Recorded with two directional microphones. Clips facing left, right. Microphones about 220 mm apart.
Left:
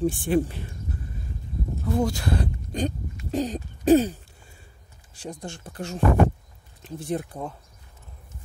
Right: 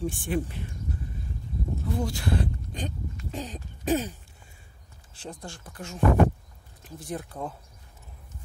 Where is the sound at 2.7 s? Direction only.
40° left (ahead or behind).